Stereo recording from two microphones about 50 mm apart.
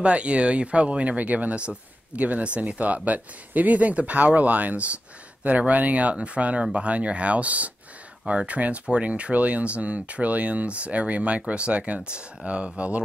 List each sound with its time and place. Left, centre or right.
0.0 s speech: right